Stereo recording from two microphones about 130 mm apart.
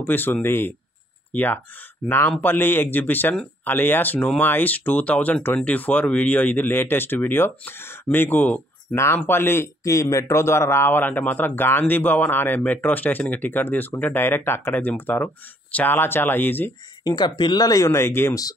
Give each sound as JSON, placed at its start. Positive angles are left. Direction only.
{"t": 0.0, "sound": "speech", "side_deg": 15}
{"t": 17.0, "sound": "speech", "side_deg": 30}